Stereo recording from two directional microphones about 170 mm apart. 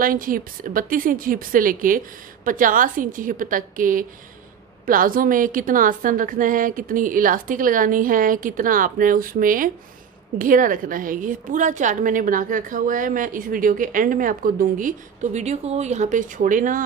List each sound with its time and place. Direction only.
0.0 s a woman's voice: 55° right (ahead or behind)